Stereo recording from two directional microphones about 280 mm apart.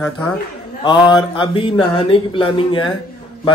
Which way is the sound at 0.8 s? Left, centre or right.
Centre.